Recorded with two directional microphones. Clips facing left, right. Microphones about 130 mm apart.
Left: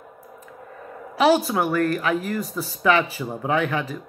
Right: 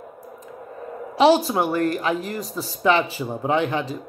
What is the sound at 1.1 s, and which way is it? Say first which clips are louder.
A woman's voice: right 2 dB; 30° right (ahead or behind).